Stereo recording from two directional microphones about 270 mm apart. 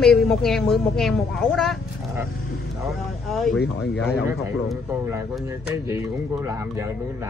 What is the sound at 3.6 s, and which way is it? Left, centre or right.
Speech, left.